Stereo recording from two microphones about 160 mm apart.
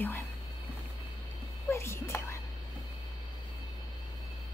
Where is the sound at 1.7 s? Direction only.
15° left (ahead or behind).